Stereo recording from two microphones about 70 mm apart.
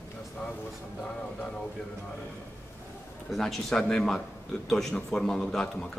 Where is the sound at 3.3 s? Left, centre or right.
Centre.